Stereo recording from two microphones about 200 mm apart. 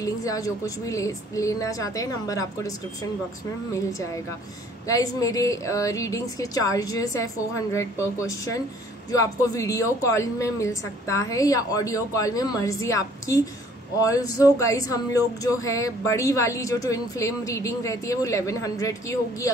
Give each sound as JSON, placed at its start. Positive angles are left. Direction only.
{"t": 0.0, "sound": "a woman's voice", "side_deg": 15}
{"t": 3.7, "sound": "a woman's voice", "side_deg": 15}